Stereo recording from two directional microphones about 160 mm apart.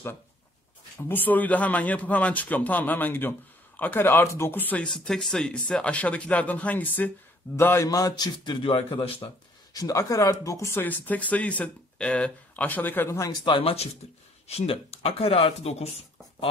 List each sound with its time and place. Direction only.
0.9 s a man's voice: 10° left (ahead or behind); by 9.3 s 35° left (ahead or behind)
9.8 s a man's voice: 20° left (ahead or behind); by 15.9 s 40° left (ahead or behind)